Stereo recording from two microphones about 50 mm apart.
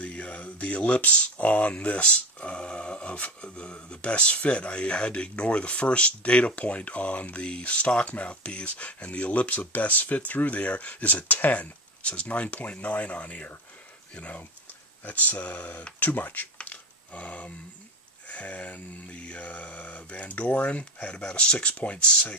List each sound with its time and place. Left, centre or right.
0.0 s speech: left
16.6 s a sound: left
18.3 s speech: left